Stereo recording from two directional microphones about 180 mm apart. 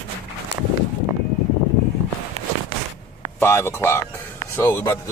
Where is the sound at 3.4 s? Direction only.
15° left (ahead or behind).